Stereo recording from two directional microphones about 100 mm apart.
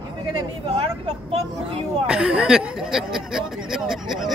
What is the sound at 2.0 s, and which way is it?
Speech, 10° right (ahead or behind).